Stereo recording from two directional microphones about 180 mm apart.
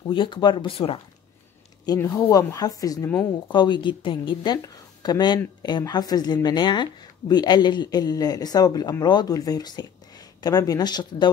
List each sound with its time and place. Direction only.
0.1 s speech: 25° left (ahead or behind)
1.9 s speech: 15° left (ahead or behind)
3.5 s speech: 25° left (ahead or behind)